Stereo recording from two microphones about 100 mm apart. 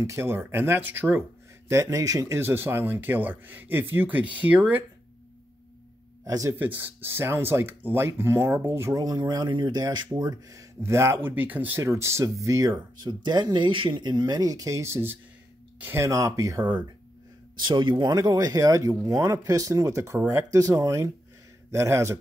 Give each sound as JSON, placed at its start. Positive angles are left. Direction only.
{"t": 0.0, "sound": "speech", "side_deg": -30}
{"t": 1.7, "sound": "speech", "side_deg": -30}
{"t": 6.2, "sound": "speech", "side_deg": -35}
{"t": 6.5, "sound": "speech", "side_deg": -20}
{"t": 9.0, "sound": "speech", "side_deg": -40}
{"t": 13.0, "sound": "speech", "side_deg": -45}
{"t": 17.6, "sound": "speech", "side_deg": -50}